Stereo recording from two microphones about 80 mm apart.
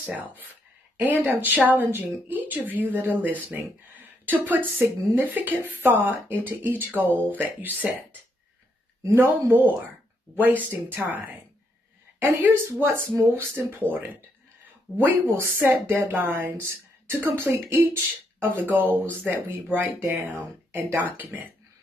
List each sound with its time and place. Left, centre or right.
1.0 s speech: right